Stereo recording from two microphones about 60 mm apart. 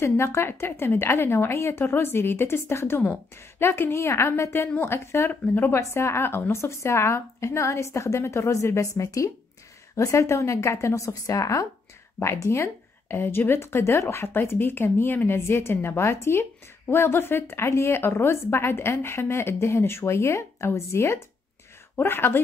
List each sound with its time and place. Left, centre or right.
0.0 s speech: left
5.3 s speech: left
5.7 s speech: left
8.9 s a woman's voice: left
12.2 s speech: left
13.2 s speech: left
21.9 s speech: left